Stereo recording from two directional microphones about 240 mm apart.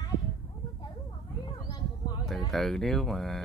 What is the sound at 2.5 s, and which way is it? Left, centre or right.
Speech, centre.